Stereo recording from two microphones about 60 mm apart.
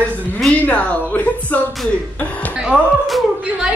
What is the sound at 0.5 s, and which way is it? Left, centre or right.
A woman's voice, centre.